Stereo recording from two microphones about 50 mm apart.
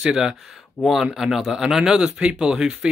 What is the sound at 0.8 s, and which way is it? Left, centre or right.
Speech, centre.